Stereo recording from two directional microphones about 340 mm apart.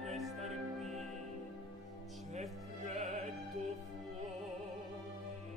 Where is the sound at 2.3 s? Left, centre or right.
Centre.